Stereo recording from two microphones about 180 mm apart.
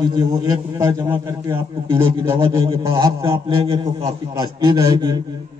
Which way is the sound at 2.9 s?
30° right (ahead or behind).